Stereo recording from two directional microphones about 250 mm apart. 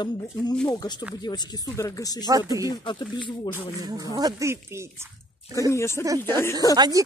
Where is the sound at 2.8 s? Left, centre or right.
Centre.